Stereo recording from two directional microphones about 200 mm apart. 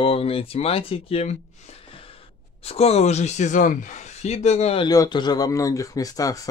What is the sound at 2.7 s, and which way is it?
Speech, 30° left (ahead or behind).